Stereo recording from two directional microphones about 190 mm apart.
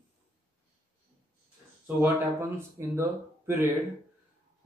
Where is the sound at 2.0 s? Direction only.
15° right (ahead or behind).